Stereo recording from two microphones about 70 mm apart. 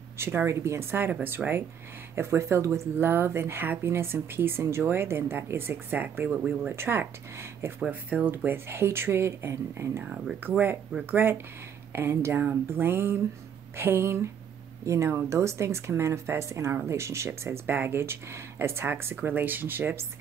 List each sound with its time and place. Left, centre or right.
0.2 s speech: right
2.1 s speech: right
8.5 s speech: right
10.0 s speech: centre
11.1 s speech: right